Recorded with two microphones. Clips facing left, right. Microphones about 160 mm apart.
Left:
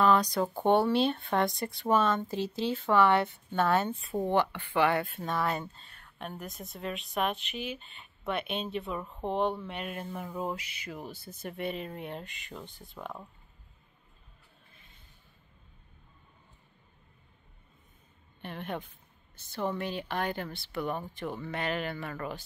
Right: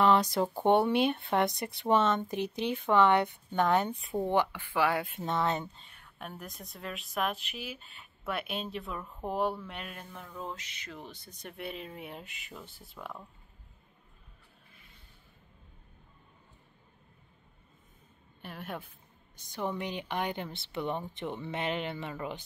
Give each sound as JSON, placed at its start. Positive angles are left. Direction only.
{"t": 0.0, "sound": "speech", "side_deg": -25}
{"t": 5.0, "sound": "speech", "side_deg": -20}
{"t": 18.4, "sound": "speech", "side_deg": -5}
{"t": 21.9, "sound": "speech", "side_deg": -10}